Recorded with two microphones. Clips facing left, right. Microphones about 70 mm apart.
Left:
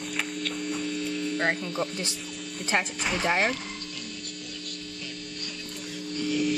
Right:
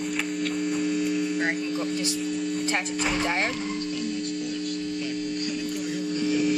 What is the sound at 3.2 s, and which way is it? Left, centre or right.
Speech, centre.